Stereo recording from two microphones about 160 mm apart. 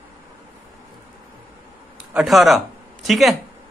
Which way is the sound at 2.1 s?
5° right (ahead or behind).